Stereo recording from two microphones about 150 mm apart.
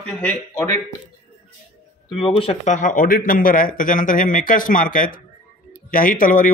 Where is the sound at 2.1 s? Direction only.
35° left (ahead or behind).